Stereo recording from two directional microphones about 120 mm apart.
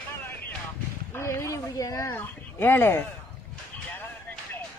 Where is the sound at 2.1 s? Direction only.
20° left (ahead or behind).